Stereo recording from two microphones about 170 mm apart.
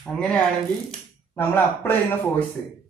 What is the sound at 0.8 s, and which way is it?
Speech, 10° left (ahead or behind).